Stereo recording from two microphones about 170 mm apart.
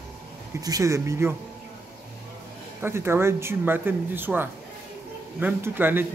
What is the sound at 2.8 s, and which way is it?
A man's voice, 15° right (ahead or behind).